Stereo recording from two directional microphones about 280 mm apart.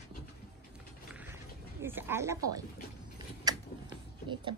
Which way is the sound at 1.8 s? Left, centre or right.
Centre.